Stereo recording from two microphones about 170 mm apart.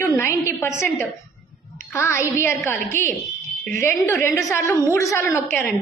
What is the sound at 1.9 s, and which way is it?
A woman's voice, 15° left (ahead or behind).